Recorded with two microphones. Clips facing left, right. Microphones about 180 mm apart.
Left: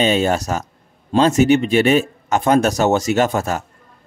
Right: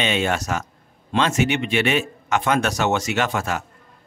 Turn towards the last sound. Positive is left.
turn(degrees=40)  # may be behind; listen again after turning